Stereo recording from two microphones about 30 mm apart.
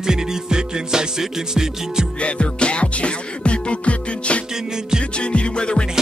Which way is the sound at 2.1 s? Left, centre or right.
Left.